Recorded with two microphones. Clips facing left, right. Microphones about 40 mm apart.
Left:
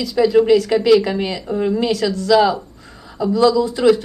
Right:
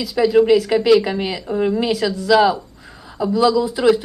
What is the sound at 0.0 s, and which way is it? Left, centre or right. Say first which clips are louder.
A woman's voice: even; centre.